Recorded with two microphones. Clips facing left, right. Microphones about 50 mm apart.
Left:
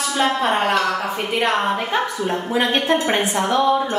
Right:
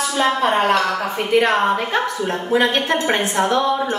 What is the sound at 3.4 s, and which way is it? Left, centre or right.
Speech, centre.